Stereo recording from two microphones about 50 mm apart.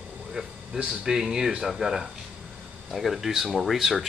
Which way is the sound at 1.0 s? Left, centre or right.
Centre.